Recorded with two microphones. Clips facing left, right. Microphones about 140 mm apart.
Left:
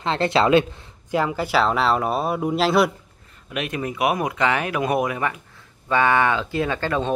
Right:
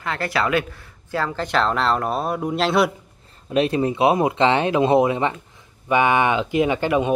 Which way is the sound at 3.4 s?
30° right (ahead or behind).